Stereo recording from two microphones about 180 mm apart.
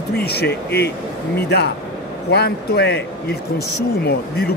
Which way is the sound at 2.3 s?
65° left (ahead or behind).